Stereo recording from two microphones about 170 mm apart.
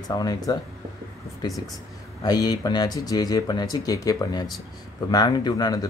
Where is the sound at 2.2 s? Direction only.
25° left (ahead or behind).